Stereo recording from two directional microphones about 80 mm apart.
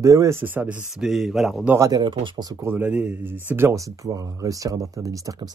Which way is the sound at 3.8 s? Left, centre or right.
Right.